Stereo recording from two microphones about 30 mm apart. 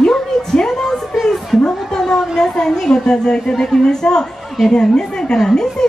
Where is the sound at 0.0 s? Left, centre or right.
Left.